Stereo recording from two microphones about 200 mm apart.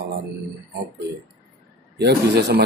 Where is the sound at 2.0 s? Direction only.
55° right (ahead or behind).